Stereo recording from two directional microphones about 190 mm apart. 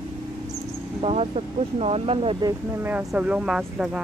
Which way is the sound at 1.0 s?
30° right (ahead or behind).